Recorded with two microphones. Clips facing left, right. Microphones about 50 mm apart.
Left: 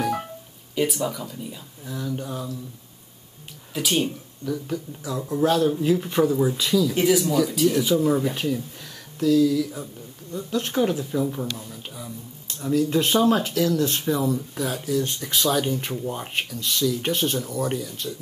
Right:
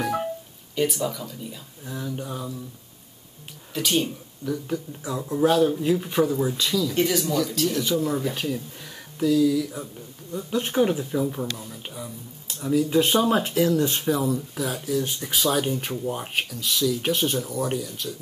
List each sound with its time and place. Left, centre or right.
0.7 s speech: centre
1.9 s speech: centre
3.7 s speech: centre
8.8 s speech: centre
14.1 s speech: centre